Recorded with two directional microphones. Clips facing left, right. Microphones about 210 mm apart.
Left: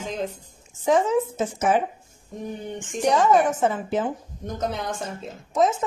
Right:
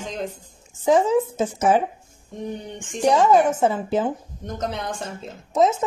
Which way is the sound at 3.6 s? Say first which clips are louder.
Right 2 dB; 30° right (ahead or behind).